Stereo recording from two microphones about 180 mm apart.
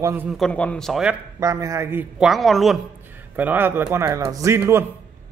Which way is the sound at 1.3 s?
15° right (ahead or behind).